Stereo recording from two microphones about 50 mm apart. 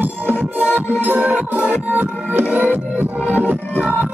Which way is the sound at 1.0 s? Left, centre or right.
Right.